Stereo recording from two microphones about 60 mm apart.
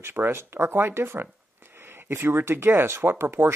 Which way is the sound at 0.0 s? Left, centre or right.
Right.